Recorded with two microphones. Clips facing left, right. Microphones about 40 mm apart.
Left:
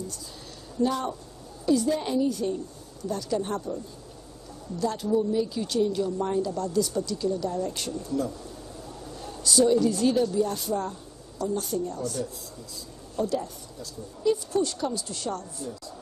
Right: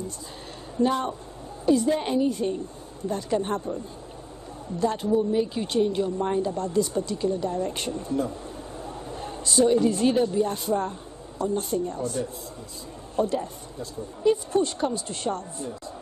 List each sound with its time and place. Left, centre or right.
0.7 s speech: right
4.7 s a woman's voice: right